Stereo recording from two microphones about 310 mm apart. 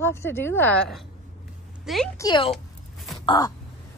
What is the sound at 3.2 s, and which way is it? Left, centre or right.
Crow, centre.